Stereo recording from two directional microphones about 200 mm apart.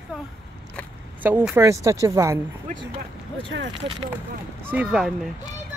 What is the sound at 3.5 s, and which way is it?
Speech, 70° right (ahead or behind).